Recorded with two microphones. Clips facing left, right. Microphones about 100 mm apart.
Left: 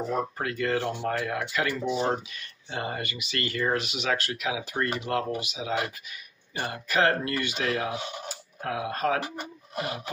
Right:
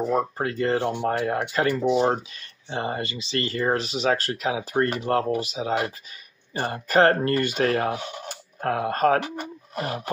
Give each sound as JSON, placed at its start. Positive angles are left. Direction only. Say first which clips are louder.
{"t": 0.4, "sound": "speech", "louder": "right 4 dB", "side_deg": -30}